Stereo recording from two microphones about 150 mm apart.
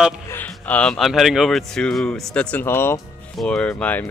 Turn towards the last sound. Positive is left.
turn(degrees=10)  # may be behind; listen again after turning